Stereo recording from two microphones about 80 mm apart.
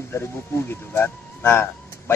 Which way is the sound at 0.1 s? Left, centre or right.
Left.